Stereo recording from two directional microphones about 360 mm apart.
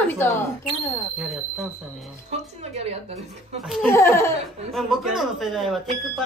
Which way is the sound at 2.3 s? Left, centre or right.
Centre.